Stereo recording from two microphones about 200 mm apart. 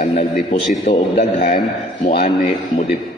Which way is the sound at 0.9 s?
30° left (ahead or behind).